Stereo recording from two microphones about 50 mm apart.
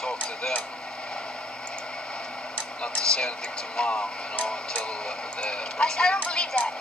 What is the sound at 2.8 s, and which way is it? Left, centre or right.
Speech, centre.